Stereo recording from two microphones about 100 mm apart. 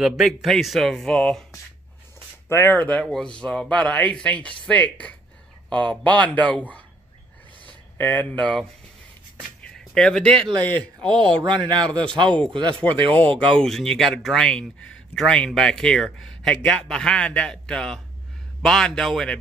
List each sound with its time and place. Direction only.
0.0 s speech: centre (ahead or behind)
2.5 s speech: 20° left (ahead or behind)
7.6 s speech: 15° left (ahead or behind)
9.6 s a sound: 5° left (ahead or behind)
11.0 s speech: 55° right (ahead or behind)
11.4 s speech: 10° left (ahead or behind)
12.5 s speech: 60° right (ahead or behind)
13.4 s speech: 5° left (ahead or behind)